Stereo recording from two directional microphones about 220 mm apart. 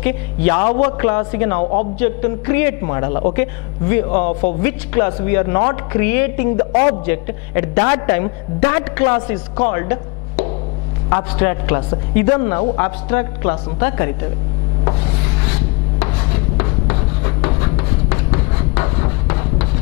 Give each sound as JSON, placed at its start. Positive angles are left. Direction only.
{"t": 0.0, "sound": "a woman's voice", "side_deg": 10}
{"t": 1.6, "sound": "a man's voice", "side_deg": 35}
{"t": 2.0, "sound": "a woman's voice", "side_deg": 10}
{"t": 14.9, "sound": "rub", "side_deg": 15}